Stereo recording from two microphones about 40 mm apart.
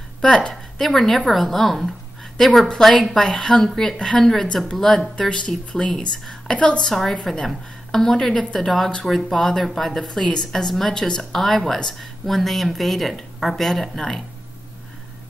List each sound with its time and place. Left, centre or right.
0.2 s a woman's voice: left
0.7 s a woman's voice: centre
6.5 s a woman's voice: left
6.8 s a woman's voice: centre